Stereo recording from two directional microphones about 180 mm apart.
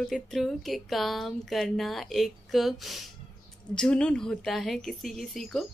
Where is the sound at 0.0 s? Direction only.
Centre (ahead or behind).